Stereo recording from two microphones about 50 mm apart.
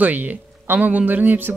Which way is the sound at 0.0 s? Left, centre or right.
Right.